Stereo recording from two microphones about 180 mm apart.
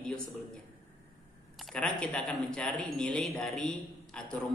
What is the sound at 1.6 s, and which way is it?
Speech, 5° left (ahead or behind).